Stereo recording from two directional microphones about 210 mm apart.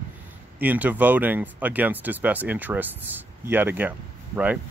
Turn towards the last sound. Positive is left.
turn(degrees=-5)  # may be behind; listen again after turning